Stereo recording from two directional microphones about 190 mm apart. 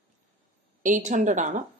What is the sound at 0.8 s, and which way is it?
Speech, 40° right (ahead or behind).